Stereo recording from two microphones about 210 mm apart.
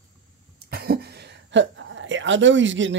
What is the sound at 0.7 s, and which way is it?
A woman's voice, 45° right (ahead or behind).